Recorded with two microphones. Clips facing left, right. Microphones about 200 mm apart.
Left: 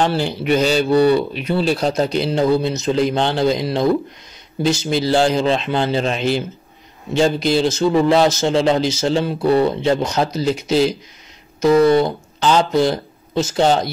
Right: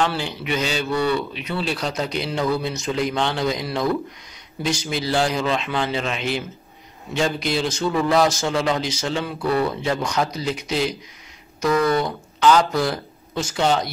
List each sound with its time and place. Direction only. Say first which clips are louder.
0.0 s a man's voice: left 5 dB; 35° left (ahead or behind)